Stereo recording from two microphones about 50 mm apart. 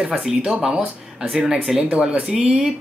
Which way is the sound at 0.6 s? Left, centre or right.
Centre.